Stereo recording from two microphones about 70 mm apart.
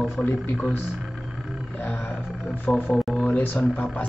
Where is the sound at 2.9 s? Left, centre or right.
Centre.